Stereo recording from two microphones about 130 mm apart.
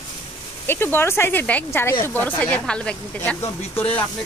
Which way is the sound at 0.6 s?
15° left (ahead or behind).